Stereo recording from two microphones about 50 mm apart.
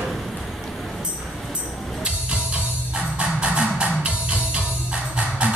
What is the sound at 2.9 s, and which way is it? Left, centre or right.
Music, right.